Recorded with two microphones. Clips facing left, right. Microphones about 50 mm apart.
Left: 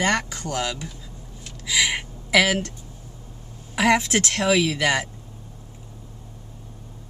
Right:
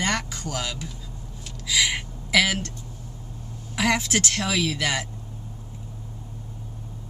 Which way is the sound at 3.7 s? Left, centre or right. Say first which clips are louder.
Left 4 dB; centre.